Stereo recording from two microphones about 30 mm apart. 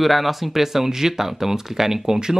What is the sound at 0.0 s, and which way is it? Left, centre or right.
Speech, centre.